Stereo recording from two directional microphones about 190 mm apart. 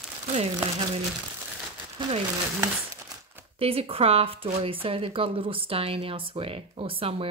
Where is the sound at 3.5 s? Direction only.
30° right (ahead or behind).